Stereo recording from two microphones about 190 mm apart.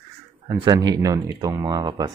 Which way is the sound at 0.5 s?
20° right (ahead or behind).